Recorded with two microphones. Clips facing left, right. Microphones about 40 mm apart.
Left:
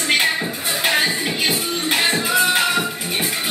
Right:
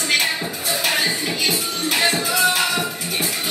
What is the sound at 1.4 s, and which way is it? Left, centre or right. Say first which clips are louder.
Music: left 1 dB; left.